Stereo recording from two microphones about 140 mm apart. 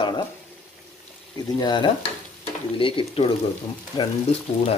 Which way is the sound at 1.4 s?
30° left (ahead or behind).